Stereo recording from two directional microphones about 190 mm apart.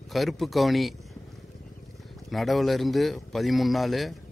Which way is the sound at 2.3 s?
Centre (ahead or behind).